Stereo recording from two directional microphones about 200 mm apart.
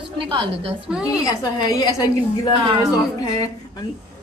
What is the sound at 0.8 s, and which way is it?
Speech, 5° right (ahead or behind).